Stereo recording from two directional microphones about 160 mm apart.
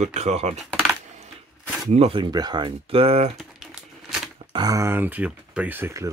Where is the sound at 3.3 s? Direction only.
Centre (ahead or behind).